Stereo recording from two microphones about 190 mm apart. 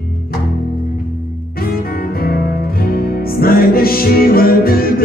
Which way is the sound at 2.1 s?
55° left (ahead or behind).